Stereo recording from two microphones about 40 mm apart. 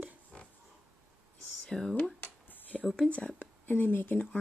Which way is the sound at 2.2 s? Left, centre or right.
Left.